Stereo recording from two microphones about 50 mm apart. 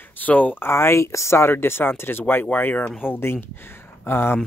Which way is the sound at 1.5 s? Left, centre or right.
Left.